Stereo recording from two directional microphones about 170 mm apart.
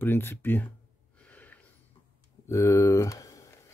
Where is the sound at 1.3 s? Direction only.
10° left (ahead or behind).